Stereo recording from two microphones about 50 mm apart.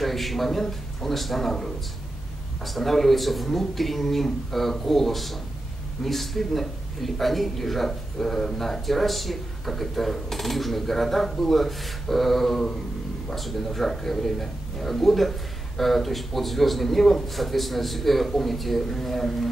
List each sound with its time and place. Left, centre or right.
0.0 s a man's voice: centre